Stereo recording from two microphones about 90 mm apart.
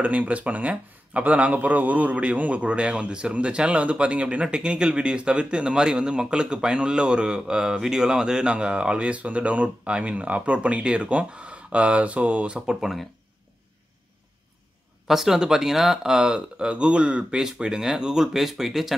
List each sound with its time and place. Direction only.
0.0 s speech: 15° right (ahead or behind)
15.0 s speech: 5° right (ahead or behind)